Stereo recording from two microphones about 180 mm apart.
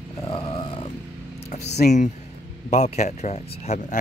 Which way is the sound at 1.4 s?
40° left (ahead or behind).